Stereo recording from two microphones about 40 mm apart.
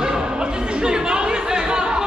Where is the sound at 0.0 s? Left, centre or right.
Centre.